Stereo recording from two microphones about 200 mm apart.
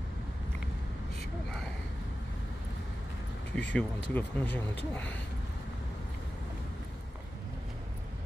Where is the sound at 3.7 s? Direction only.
5° left (ahead or behind).